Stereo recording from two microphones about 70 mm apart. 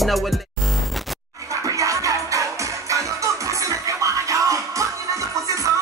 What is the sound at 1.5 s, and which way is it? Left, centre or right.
Music, right.